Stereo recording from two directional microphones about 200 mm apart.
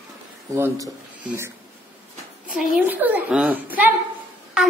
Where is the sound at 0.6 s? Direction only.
15° right (ahead or behind).